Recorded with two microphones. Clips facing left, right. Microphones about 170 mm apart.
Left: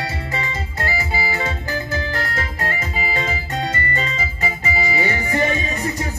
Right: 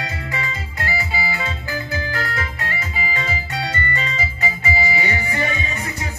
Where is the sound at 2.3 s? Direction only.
45° left (ahead or behind).